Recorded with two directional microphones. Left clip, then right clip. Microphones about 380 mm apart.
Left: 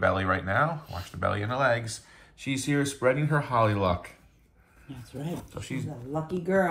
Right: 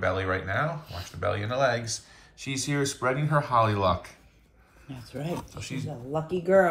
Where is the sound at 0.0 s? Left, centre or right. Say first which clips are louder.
Left 2 dB; centre.